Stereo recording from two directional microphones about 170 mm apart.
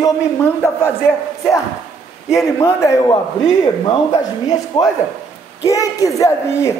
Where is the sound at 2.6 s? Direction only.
20° left (ahead or behind).